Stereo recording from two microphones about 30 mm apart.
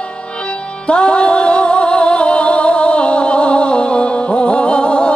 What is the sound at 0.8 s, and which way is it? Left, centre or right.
Music, left.